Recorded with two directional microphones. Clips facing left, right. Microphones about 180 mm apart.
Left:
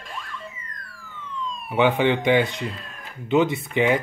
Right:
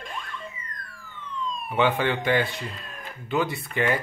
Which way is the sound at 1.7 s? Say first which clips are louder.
Left 4 dB; 15° left (ahead or behind).